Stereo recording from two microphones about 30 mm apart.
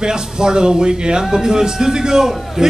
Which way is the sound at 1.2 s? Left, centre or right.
Centre.